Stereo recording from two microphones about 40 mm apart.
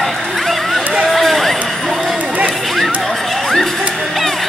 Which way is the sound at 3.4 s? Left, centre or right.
Centre.